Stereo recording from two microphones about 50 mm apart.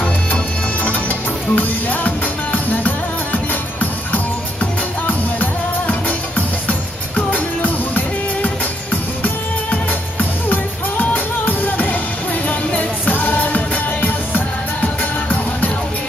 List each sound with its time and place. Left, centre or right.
0.8 s music: left
5.0 s music: left